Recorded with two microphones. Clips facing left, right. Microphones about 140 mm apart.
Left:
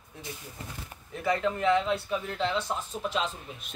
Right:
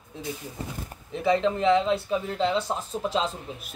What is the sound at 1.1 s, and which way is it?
Speech, 25° right (ahead or behind).